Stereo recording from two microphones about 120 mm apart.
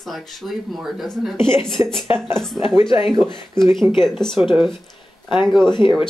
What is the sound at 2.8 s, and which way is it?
Speech, 45° left (ahead or behind).